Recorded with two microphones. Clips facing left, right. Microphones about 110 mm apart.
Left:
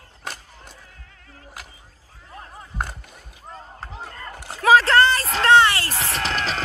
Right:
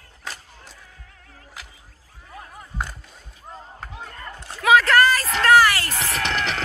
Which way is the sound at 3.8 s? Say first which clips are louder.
Left 2 dB; 25° left (ahead or behind).